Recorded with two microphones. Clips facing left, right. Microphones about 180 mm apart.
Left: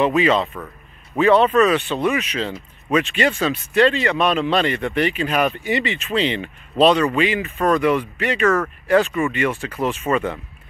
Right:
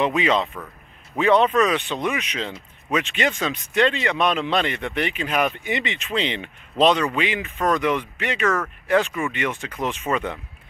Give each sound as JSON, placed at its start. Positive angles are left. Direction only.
{"t": 0.0, "sound": "speech", "side_deg": -20}
{"t": 7.6, "sound": "speech", "side_deg": 10}
{"t": 8.2, "sound": "speech", "side_deg": -15}